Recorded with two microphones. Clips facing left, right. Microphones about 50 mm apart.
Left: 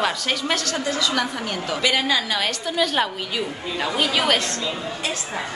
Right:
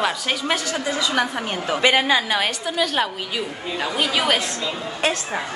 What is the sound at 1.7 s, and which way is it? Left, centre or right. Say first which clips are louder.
Speech: right 4 dB; right.